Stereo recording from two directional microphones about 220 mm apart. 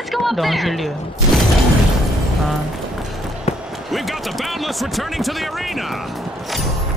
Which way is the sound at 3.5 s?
30° left (ahead or behind).